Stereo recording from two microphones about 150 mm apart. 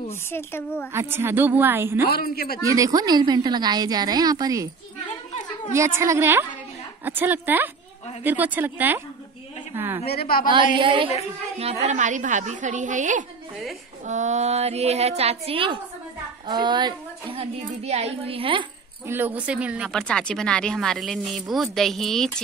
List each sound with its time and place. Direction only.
0.3 s a woman's voice: 15° left (ahead or behind)
0.9 s a woman's voice: 15° right (ahead or behind)
2.0 s a man's voice: 90° left
2.6 s a woman's voice: 20° right (ahead or behind)
5.7 s a woman's voice: 20° right (ahead or behind)
10.0 s a woman's voice: 85° left
10.8 s a woman's voice: 35° right (ahead or behind)
11.5 s a woman's voice: 45° right (ahead or behind)
19.0 s a woman's voice: 15° right (ahead or behind)
19.9 s speech: 5° left (ahead or behind)